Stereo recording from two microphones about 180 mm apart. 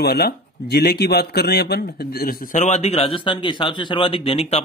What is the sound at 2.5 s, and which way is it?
A man's voice, 40° left (ahead or behind).